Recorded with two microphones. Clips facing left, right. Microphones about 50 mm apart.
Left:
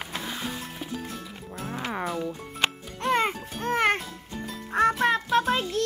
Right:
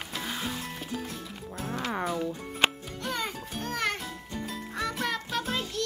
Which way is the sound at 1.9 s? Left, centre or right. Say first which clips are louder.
Even; centre.